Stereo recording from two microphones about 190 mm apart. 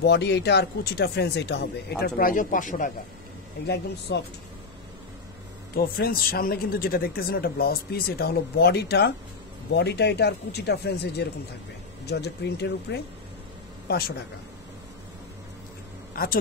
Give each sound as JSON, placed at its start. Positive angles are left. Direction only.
{"t": 0.0, "sound": "speech", "side_deg": 60}
{"t": 4.1, "sound": "speech", "side_deg": 65}
{"t": 5.8, "sound": "speech", "side_deg": 50}
{"t": 16.1, "sound": "speech", "side_deg": 50}